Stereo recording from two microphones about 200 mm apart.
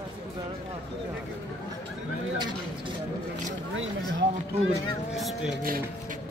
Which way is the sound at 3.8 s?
80° right.